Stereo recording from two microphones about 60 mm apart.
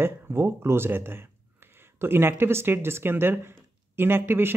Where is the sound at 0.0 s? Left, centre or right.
Right.